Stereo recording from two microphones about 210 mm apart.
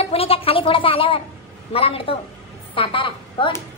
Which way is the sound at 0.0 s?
30° left (ahead or behind).